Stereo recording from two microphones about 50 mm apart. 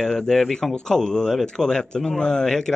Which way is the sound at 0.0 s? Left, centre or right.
Centre.